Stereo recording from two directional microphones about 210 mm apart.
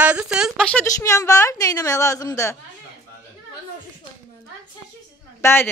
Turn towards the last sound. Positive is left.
turn(degrees=10)  # may be behind; listen again after turning